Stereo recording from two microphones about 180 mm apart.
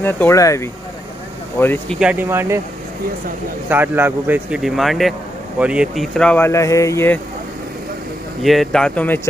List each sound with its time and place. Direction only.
0.0 s speech: 15° left (ahead or behind)
2.0 s speech: 10° right (ahead or behind)
3.6 s a man's voice: 10° right (ahead or behind); by 7.2 s 15° left (ahead or behind)
8.4 s a man's voice: centre (ahead or behind)